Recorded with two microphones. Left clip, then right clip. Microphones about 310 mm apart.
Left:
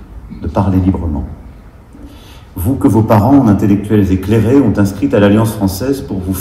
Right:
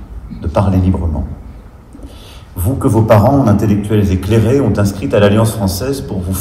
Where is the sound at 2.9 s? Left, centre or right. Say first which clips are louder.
Right 3 dB; right.